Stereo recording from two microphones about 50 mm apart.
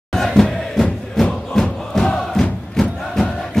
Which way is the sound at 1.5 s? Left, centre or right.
Centre.